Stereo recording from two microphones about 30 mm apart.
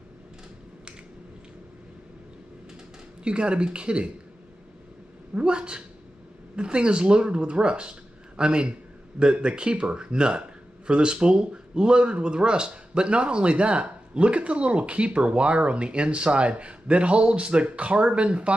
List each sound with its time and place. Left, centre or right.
3.3 s speech: right
5.3 s speech: right